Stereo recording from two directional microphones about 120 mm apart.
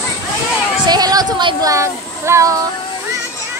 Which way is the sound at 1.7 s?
25° right (ahead or behind).